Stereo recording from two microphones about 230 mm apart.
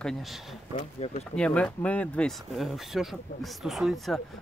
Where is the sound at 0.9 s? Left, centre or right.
Left.